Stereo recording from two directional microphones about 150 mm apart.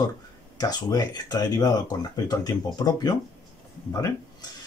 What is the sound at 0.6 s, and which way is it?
Speech, 25° left (ahead or behind).